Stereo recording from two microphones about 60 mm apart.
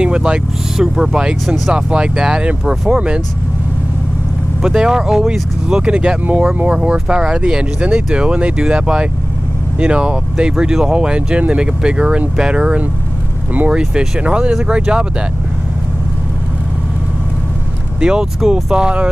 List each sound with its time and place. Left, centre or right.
0.0 s speech: centre
2.9 s speech: centre
4.6 s speech: centre
18.0 s speech: centre